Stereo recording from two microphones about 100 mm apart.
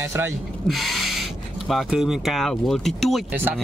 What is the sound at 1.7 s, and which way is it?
Speech, 5° right (ahead or behind).